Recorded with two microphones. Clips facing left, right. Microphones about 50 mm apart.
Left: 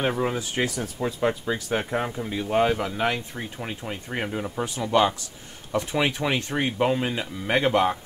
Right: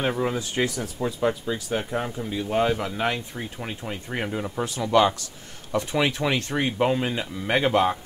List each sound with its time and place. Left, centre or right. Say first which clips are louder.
0.0 s speech: even; centre
1.0 s speech: even; centre
4.7 s speech: right 2 dB; centre
6.8 s speech: even; centre